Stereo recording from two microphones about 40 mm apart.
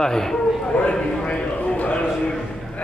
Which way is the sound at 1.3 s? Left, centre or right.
Left.